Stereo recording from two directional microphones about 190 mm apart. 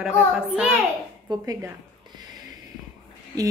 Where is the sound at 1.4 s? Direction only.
20° right (ahead or behind).